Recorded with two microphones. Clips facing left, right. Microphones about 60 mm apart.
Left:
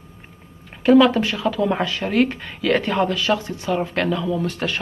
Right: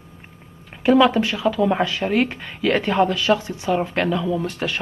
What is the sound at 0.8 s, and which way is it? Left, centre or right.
Speech, centre.